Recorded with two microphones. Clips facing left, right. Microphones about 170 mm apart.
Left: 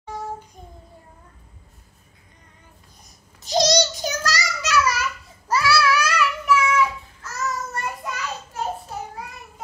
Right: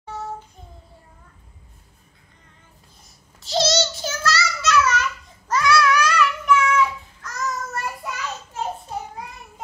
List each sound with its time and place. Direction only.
3.3 s child singing: 15° left (ahead or behind); by 8.1 s 5° right (ahead or behind)